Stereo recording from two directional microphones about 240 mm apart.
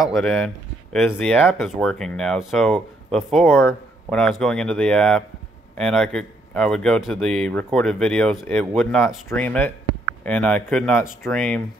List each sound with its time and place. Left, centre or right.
0.0 s speech: centre